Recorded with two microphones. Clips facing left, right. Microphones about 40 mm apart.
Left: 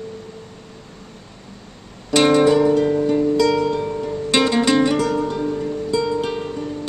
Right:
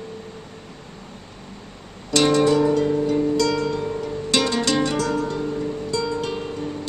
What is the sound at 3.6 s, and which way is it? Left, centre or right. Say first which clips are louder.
Music: left 3 dB; centre.